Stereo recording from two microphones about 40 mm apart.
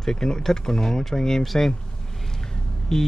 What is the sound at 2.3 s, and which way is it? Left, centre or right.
Vehicle, centre.